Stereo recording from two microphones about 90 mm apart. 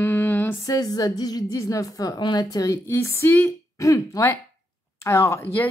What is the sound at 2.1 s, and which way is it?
Speech, 55° left (ahead or behind).